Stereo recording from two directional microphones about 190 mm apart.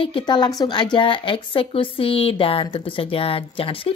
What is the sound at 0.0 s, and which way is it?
Speech, 25° left (ahead or behind).